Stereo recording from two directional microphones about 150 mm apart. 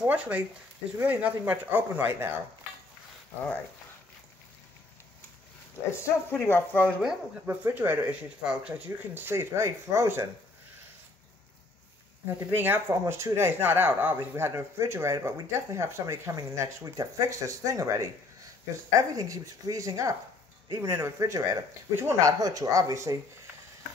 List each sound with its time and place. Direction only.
0.0 s speech: 10° right (ahead or behind)
6.3 s speech: 15° left (ahead or behind)
7.0 s speech: 5° right (ahead or behind)
7.4 s speech: 15° right (ahead or behind)
12.4 s speech: 15° right (ahead or behind)